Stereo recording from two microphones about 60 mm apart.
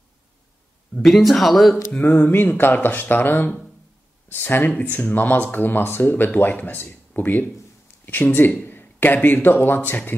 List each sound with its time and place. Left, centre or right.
1.0 s speech: centre
1.9 s a sound: centre
2.1 s speech: left